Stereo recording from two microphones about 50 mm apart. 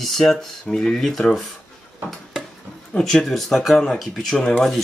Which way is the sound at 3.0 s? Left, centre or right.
Centre.